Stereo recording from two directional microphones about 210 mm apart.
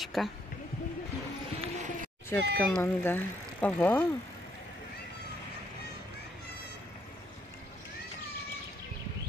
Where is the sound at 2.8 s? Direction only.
10° left (ahead or behind).